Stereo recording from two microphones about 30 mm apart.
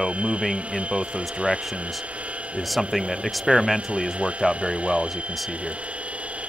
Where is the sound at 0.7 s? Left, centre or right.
Right.